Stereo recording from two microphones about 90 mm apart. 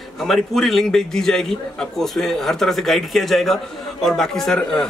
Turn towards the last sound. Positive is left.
turn(degrees=5)  # may be behind; listen again after turning